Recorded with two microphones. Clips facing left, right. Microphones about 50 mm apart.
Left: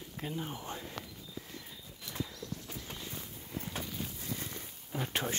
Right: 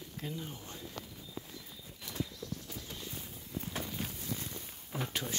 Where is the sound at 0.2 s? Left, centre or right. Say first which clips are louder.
Left 4 dB; left.